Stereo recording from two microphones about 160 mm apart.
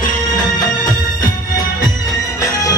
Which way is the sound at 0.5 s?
25° left (ahead or behind).